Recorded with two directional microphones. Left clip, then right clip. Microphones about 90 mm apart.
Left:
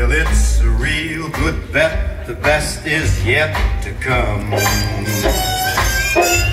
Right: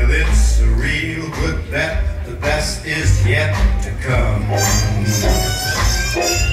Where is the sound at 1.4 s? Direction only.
35° left (ahead or behind).